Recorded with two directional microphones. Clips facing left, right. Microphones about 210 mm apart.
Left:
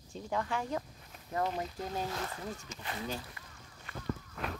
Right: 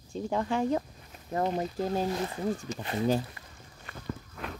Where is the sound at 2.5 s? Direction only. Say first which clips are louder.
Right 9 dB; 30° right (ahead or behind).